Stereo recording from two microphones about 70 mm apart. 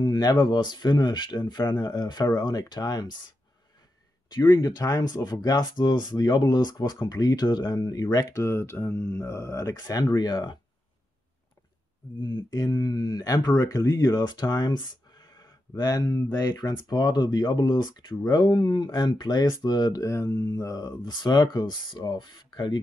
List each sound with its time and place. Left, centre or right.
0.0 s speech: left
4.3 s speech: left
7.1 s speech: left
9.8 s speech: left
12.2 s speech: left
19.6 s speech: left
20.1 s speech: left
20.3 s speech: left